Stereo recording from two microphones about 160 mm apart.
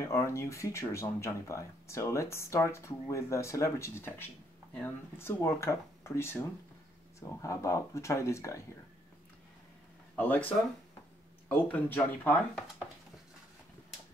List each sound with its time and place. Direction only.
0.0 s speech: 20° left (ahead or behind)
10.1 s speech: 10° left (ahead or behind)